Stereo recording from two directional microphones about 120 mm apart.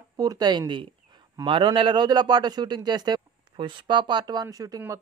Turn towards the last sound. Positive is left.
turn(degrees=-30)  # may be behind; listen again after turning